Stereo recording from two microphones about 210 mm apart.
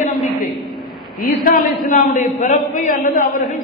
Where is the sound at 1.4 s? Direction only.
40° left (ahead or behind).